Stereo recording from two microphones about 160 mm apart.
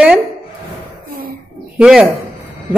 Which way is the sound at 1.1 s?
65° right (ahead or behind).